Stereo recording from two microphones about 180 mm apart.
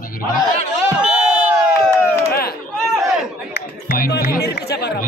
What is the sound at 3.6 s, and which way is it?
Music, 60° left (ahead or behind).